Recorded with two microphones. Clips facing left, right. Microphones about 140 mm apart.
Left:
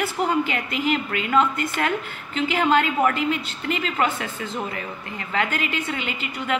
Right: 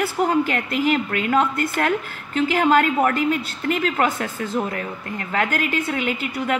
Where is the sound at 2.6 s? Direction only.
45° right (ahead or behind).